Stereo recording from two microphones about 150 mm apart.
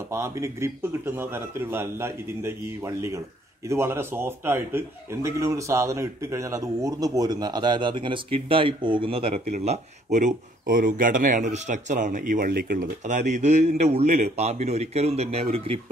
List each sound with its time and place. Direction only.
0.1 s a man's voice: 20° right (ahead or behind); by 15.8 s 40° right (ahead or behind)